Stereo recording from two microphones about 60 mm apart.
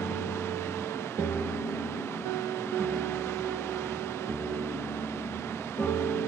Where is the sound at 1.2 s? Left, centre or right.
Left.